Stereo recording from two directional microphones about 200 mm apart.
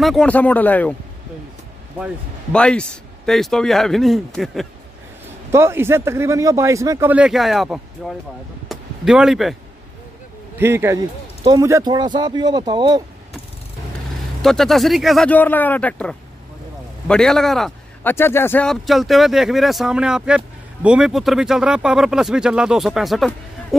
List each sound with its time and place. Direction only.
0.0 s speech: centre (ahead or behind)
2.5 s speech: 5° left (ahead or behind)
5.5 s speech: 15° right (ahead or behind)
8.6 s a sound: 5° right (ahead or behind)
10.6 s speech: 10° right (ahead or behind)
14.4 s speech: centre (ahead or behind)
18.1 s speech: 10° left (ahead or behind)